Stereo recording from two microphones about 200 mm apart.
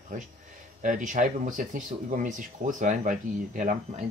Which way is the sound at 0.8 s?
40° right (ahead or behind).